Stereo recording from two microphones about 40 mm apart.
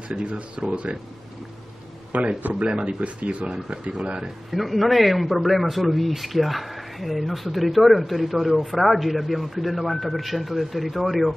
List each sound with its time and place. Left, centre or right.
0.1 s speech: right
2.4 s speech: right
4.5 s a man's voice: centre